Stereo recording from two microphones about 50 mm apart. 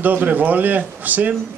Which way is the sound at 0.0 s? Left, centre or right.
Right.